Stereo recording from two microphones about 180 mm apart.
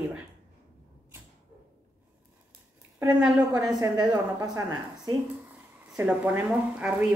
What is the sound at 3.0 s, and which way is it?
Speech, 5° right (ahead or behind).